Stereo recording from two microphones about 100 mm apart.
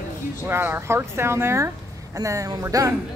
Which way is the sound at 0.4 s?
25° right (ahead or behind).